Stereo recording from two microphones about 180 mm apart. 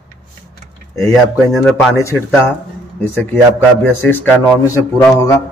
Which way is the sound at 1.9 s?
15° left (ahead or behind).